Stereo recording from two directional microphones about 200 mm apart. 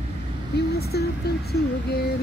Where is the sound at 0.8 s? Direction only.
55° left (ahead or behind).